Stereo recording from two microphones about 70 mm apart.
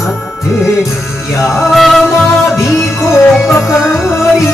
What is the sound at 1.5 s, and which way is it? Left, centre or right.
Music, centre.